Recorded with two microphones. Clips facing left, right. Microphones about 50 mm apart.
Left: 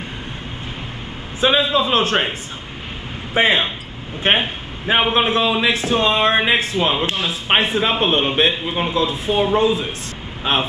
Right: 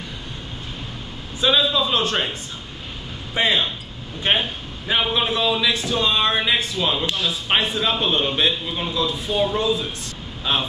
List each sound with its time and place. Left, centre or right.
1.4 s a man's voice: left
3.3 s a man's voice: left